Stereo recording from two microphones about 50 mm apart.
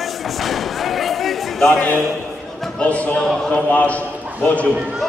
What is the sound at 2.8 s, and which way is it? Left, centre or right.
Speech, left.